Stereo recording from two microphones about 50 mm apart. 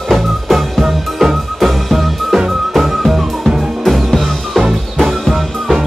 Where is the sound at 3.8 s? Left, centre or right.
Centre.